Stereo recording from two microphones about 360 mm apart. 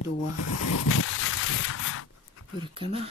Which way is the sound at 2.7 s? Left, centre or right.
Centre.